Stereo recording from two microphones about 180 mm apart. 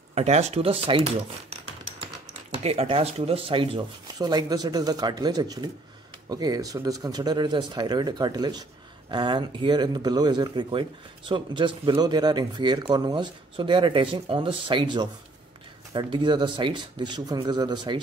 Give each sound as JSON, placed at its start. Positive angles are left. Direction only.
{"t": 0.1, "sound": "speech", "side_deg": -40}